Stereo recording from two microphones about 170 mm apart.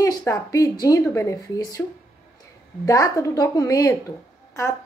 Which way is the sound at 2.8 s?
20° left (ahead or behind).